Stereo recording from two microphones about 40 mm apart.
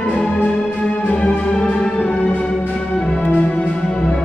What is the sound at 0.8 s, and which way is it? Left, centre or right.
Music, left.